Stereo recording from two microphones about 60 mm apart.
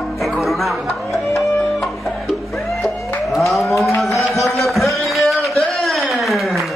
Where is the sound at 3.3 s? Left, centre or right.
Centre.